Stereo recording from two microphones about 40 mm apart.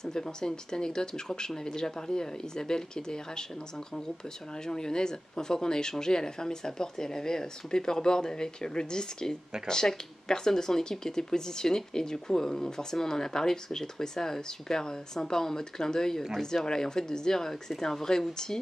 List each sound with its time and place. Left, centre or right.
0.0 s speech: centre
4.6 s speech: centre